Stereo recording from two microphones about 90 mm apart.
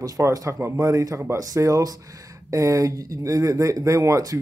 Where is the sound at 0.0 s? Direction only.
40° right (ahead or behind).